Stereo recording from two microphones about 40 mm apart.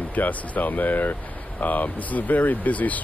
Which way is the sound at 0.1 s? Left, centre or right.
Left.